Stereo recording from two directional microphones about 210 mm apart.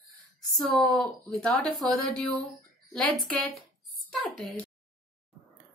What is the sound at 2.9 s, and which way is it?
Speech, centre (ahead or behind).